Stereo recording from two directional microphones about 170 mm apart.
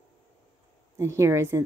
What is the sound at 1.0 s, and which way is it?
Speech, 15° right (ahead or behind).